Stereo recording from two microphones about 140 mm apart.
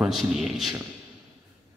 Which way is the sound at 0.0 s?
Centre (ahead or behind).